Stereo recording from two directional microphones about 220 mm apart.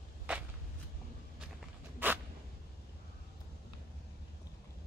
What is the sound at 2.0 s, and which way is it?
Zipper, 10° right (ahead or behind).